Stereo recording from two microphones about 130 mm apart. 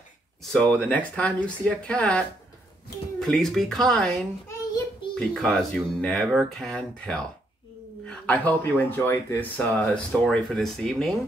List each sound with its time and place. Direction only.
0.4 s speech: 5° left (ahead or behind)